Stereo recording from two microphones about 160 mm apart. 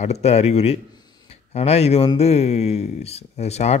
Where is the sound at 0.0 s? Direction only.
40° left (ahead or behind).